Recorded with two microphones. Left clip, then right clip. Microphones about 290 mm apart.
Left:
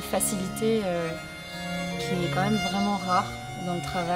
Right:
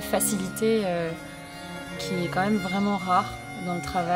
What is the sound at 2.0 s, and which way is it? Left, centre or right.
Speech, centre.